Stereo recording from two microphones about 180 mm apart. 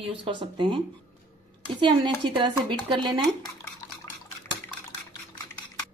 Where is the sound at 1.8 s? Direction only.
25° right (ahead or behind).